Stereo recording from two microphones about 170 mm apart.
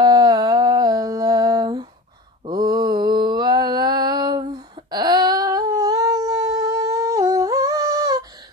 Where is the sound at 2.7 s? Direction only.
25° right (ahead or behind).